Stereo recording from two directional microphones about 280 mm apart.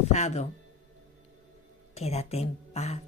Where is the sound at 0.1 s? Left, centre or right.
Left.